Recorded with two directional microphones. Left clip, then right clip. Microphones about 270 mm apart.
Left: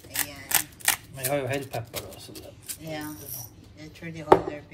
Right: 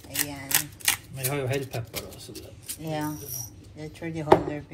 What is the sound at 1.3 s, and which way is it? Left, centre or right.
Speech, left.